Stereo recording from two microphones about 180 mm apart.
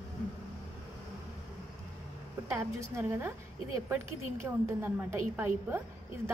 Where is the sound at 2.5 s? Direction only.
15° right (ahead or behind).